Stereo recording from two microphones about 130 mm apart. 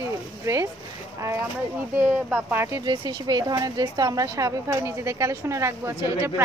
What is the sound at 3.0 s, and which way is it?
A woman's voice, 30° right (ahead or behind).